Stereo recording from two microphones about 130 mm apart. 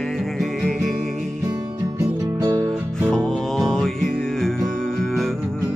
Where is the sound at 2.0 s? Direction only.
25° right (ahead or behind).